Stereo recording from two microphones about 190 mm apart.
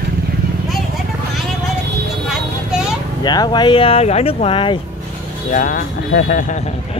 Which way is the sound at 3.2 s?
20° left (ahead or behind).